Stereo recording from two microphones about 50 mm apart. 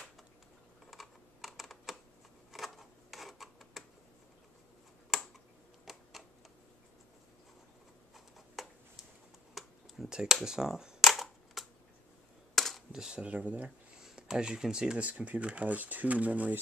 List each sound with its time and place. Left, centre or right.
0.8 s computer keyboard: centre
2.5 s a sound: centre
5.1 s computer keyboard: centre
5.9 s a sound: centre
8.1 s a sound: centre
9.5 s computer keyboard: centre
10.0 s speech: centre
11.0 s cap gun: centre
12.5 s camera: centre
12.9 s speech: centre
13.2 s speech: right
14.0 s speech: centre
15.0 s speech: right